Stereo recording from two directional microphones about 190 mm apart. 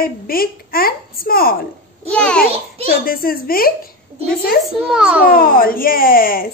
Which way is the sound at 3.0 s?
50° left (ahead or behind).